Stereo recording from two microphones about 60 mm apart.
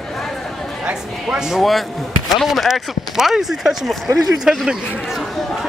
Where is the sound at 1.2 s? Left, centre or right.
Centre.